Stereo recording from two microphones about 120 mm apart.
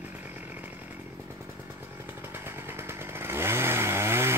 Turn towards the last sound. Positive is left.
turn(degrees=-20)  # may be behind; listen again after turning